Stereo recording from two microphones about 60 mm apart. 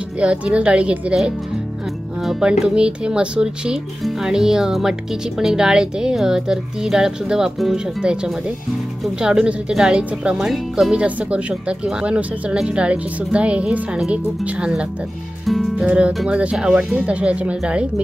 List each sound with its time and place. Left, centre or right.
0.2 s speech: centre
2.4 s speech: centre
10.9 s speech: right
14.1 s speech: right
15.4 s music: centre
15.8 s speech: centre